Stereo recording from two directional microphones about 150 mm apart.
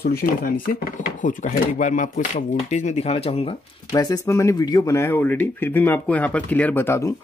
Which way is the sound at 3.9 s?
20° left (ahead or behind).